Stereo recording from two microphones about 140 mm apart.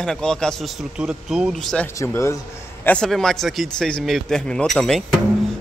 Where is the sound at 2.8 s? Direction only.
5° left (ahead or behind).